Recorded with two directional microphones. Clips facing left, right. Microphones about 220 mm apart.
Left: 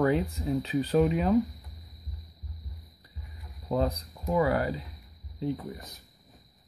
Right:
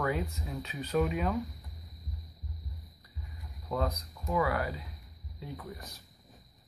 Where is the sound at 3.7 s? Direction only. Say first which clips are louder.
Left 5 dB; 30° left (ahead or behind).